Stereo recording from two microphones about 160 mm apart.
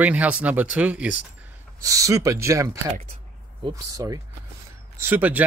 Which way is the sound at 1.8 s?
20° right (ahead or behind).